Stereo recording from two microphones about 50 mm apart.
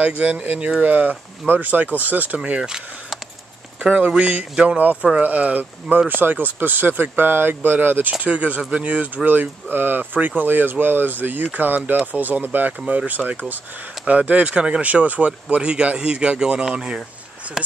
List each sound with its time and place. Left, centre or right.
0.0 s speech: right
4.1 s speech: right
5.2 s speech: right
8.1 s speech: right